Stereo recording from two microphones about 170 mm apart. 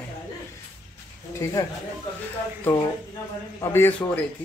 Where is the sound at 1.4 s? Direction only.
15° left (ahead or behind).